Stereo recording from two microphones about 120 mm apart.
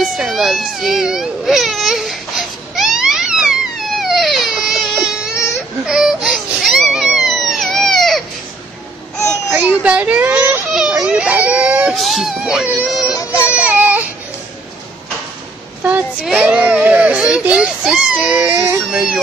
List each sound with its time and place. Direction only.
0.0 s baby cry: 5° right (ahead or behind)
9.5 s baby cry: 10° right (ahead or behind)
10.7 s baby cry: 5° right (ahead or behind)
13.1 s baby cry: 30° left (ahead or behind)
13.4 s baby cry: 10° right (ahead or behind)
15.8 s a sound: 15° right (ahead or behind)
18.4 s baby cry: 20° right (ahead or behind)
18.9 s baby cry: 10° right (ahead or behind)